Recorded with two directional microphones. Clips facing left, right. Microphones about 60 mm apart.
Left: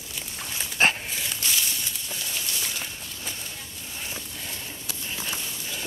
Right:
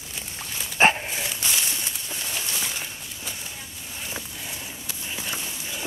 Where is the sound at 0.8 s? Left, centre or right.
Right.